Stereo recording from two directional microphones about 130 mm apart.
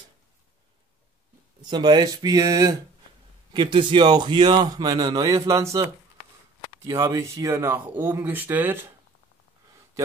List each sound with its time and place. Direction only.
1.6 s a man's voice: 35° right (ahead or behind)
3.5 s a man's voice: 40° right (ahead or behind); by 5.9 s 25° right (ahead or behind)
6.9 s speech: 25° right (ahead or behind)